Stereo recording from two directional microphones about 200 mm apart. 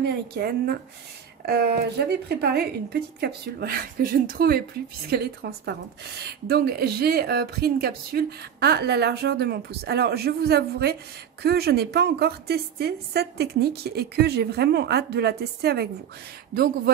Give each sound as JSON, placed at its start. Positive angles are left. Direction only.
{"t": 0.0, "sound": "speech", "side_deg": -50}